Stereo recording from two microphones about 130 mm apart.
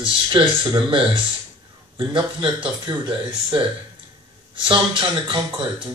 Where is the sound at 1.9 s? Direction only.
40° right (ahead or behind).